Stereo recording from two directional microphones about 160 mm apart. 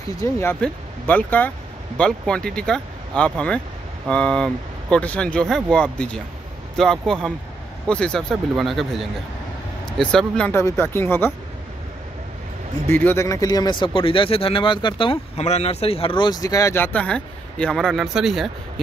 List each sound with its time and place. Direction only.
0.2 s speech: 15° left (ahead or behind)
12.8 s speech: 15° left (ahead or behind); by 18.5 s centre (ahead or behind)